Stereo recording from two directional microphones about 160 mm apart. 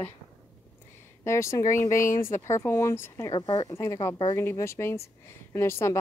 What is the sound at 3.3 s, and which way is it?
Speech, 25° left (ahead or behind).